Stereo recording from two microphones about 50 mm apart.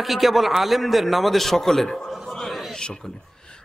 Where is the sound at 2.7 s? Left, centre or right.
Centre.